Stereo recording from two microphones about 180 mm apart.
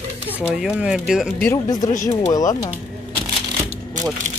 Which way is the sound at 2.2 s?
20° left (ahead or behind).